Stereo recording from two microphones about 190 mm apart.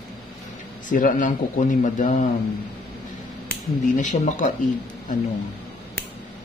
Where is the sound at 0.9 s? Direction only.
45° left (ahead or behind).